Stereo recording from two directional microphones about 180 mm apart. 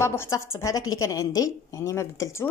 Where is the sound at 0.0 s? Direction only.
15° left (ahead or behind).